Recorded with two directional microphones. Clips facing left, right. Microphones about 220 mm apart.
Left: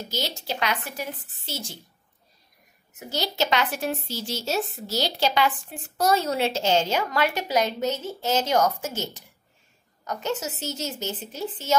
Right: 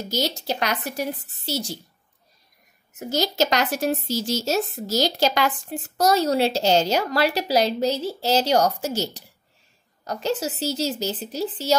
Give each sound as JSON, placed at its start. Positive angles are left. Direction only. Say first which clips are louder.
{"t": 0.1, "sound": "a woman's voice", "louder": "right 6 dB", "side_deg": -40}
{"t": 3.0, "sound": "a woman's voice", "louder": "right 5 dB", "side_deg": -45}